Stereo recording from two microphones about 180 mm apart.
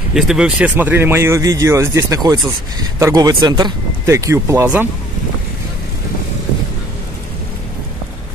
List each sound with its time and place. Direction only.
0.1 s speech: 5° right (ahead or behind)